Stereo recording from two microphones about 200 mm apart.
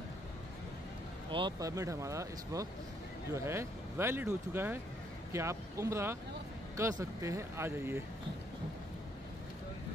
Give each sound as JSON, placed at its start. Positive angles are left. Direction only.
{"t": 1.3, "sound": "speech", "side_deg": -20}